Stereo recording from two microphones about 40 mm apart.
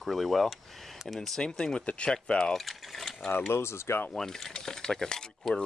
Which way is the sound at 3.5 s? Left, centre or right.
Left.